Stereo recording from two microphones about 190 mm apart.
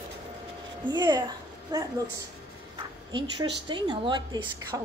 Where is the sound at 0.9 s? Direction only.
20° right (ahead or behind).